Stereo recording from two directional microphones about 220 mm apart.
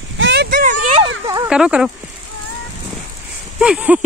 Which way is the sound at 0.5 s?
35° right (ahead or behind).